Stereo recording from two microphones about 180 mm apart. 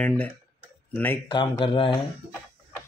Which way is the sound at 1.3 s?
25° left (ahead or behind).